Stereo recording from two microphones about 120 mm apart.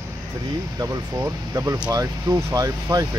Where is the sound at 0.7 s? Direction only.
30° right (ahead or behind).